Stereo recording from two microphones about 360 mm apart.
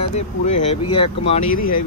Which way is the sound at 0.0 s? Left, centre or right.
Centre.